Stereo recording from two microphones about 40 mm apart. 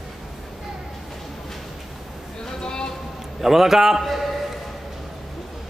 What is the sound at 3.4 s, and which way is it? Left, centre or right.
A man's voice, centre.